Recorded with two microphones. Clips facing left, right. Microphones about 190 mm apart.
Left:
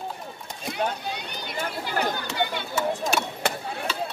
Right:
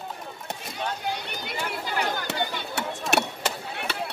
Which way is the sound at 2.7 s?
70° right (ahead or behind).